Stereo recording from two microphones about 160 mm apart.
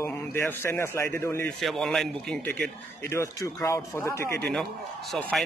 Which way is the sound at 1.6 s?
Centre (ahead or behind).